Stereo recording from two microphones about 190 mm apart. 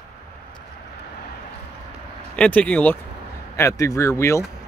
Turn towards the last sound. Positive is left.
turn(degrees=15)  # may be behind; listen again after turning